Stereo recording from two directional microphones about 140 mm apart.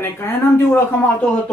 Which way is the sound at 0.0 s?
15° left (ahead or behind).